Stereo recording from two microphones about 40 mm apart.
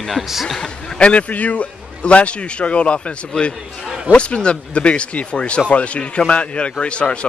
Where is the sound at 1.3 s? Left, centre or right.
Left.